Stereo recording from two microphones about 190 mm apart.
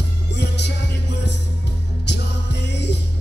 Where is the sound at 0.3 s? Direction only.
65° left (ahead or behind).